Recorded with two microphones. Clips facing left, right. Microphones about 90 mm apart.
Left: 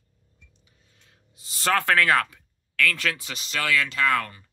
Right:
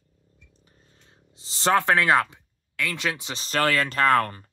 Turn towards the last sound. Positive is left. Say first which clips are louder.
# right 4 dB
turn(degrees=-45)  # may be behind; listen again after turning